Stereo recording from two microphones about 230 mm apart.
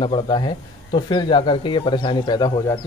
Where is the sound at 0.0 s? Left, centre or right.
Left.